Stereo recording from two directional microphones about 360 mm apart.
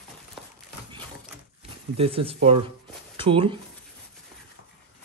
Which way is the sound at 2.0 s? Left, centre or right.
Centre.